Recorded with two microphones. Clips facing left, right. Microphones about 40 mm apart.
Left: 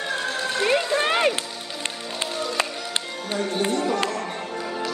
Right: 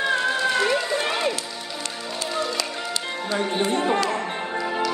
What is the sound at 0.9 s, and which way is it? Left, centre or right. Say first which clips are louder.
Music: left 3 dB; left.